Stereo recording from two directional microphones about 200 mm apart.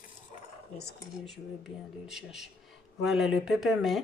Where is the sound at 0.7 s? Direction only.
Centre (ahead or behind).